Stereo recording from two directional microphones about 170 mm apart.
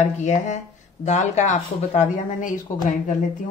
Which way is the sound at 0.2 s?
45° left (ahead or behind).